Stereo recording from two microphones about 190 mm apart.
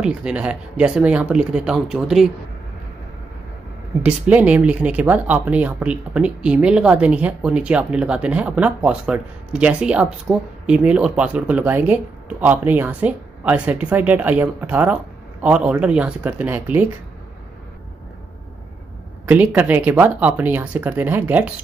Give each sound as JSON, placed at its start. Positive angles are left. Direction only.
{"t": 0.0, "sound": "speech", "side_deg": -5}
{"t": 4.0, "sound": "speech", "side_deg": -5}
{"t": 19.2, "sound": "speech", "side_deg": -10}